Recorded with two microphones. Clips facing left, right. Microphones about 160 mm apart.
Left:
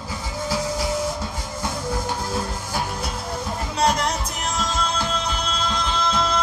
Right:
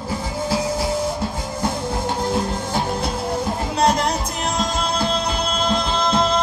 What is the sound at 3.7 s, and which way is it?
Music, 30° right (ahead or behind).